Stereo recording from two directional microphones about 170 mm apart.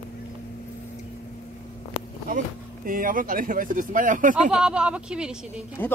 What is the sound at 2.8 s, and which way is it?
Speech, 55° right (ahead or behind).